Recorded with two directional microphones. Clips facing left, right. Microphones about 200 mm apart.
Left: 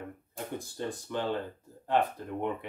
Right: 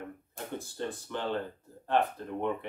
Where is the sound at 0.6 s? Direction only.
15° left (ahead or behind).